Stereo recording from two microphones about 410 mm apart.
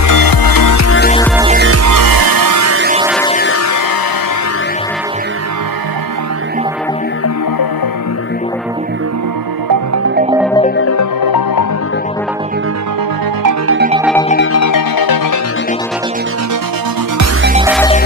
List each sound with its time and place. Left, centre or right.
0.0 s music: left
0.8 s music: left
1.3 s music: centre
1.6 s music: right
1.9 s music: right
3.4 s music: left
11.2 s music: left
14.5 s music: left
17.4 s music: right